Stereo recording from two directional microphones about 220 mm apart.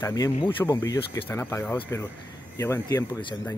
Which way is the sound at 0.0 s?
15° left (ahead or behind).